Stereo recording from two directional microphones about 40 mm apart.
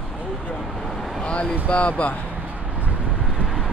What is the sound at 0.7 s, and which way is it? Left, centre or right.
Vehicle, centre.